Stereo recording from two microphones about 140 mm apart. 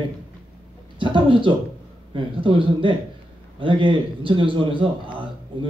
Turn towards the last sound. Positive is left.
turn(degrees=-35)  # may be behind; listen again after turning